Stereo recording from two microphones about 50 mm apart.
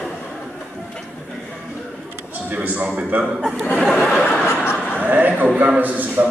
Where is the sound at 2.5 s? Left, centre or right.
Right.